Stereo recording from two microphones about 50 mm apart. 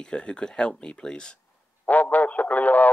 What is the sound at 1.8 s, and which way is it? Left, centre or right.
Radio, left.